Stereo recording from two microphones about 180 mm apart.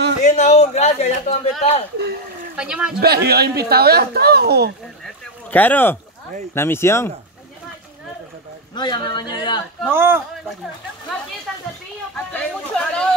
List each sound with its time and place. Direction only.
0.2 s a man's voice: 40° left (ahead or behind)
2.5 s speech: 5° right (ahead or behind)
3.0 s speech: 60° right (ahead or behind)
5.0 s a sound: 10° left (ahead or behind)
6.5 s speech: 15° left (ahead or behind)
8.7 s a man's voice: 25° left (ahead or behind)
9.8 s a man's voice: 10° right (ahead or behind)
12.3 s a sound: 5° left (ahead or behind)